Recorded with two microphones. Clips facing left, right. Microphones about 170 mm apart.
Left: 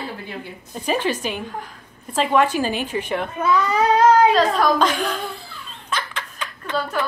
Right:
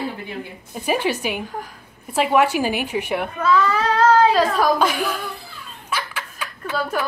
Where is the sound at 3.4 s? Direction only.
20° left (ahead or behind).